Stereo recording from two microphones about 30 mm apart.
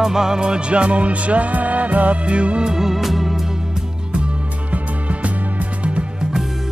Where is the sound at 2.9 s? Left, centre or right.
Centre.